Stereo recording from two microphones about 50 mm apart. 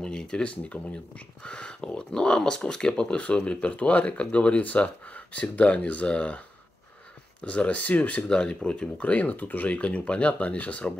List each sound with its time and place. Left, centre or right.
0.0 s speech: centre
7.4 s speech: left
8.2 s speech: centre
9.1 s speech: left